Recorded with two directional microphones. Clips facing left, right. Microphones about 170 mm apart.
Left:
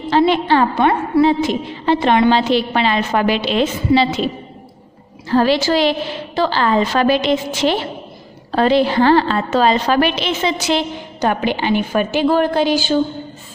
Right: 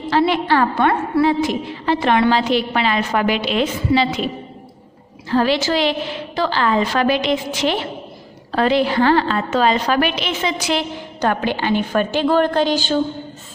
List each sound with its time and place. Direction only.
0.1 s a woman's voice: 25° left (ahead or behind)
5.3 s a woman's voice: 35° left (ahead or behind)
11.1 s a woman's voice: 15° left (ahead or behind)